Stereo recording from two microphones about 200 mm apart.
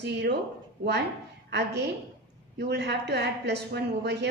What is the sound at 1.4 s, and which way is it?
A woman's voice, 60° right (ahead or behind).